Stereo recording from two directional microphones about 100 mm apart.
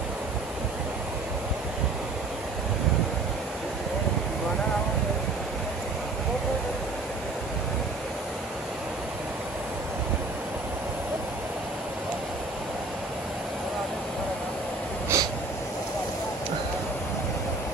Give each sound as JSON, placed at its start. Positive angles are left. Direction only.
{"t": 15.1, "sound": "snort", "side_deg": -30}